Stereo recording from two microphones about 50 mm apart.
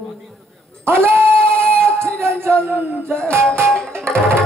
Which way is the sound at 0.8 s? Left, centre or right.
Right.